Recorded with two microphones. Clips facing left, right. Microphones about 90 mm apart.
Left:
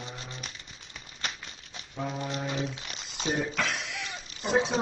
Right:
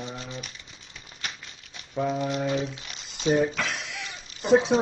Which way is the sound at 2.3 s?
20° right (ahead or behind).